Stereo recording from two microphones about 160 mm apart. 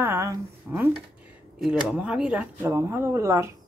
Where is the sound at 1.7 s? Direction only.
5° right (ahead or behind).